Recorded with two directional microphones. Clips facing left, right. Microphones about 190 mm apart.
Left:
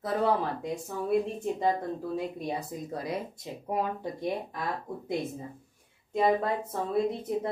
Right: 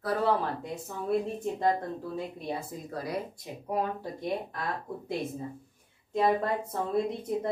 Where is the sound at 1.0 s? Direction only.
10° left (ahead or behind).